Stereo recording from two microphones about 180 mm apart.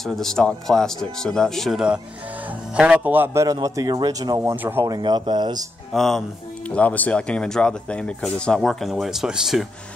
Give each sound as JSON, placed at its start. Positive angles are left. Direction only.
{"t": 0.0, "sound": "a man's voice", "side_deg": 0}
{"t": 5.9, "sound": "speech", "side_deg": 0}